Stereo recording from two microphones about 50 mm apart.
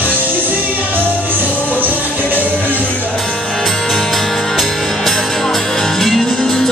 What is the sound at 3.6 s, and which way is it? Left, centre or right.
Music, centre.